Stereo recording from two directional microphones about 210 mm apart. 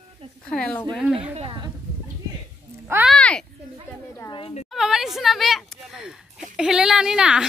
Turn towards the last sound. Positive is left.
turn(degrees=-5)  # may be behind; listen again after turning